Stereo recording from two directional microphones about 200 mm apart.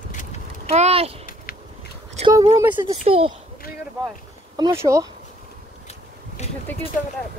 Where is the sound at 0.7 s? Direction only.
30° right (ahead or behind).